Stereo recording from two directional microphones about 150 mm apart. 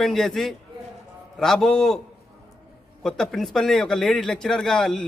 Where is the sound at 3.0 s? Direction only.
5° left (ahead or behind).